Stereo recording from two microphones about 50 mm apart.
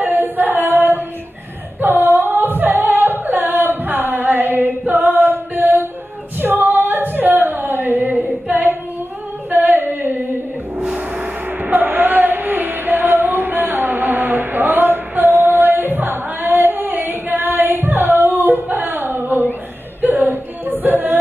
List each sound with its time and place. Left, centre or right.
0.0 s singing: right
10.8 s music: centre
11.6 s music: right